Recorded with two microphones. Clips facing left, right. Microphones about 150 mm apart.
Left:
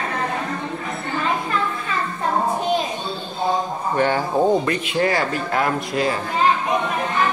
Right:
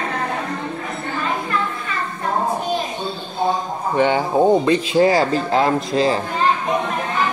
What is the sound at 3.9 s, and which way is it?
Speech, 15° right (ahead or behind).